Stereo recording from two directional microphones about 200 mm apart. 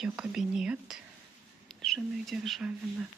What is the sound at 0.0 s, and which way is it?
Speech, 5° right (ahead or behind).